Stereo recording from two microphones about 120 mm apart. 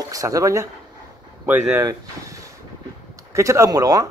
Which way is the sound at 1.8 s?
25° right (ahead or behind).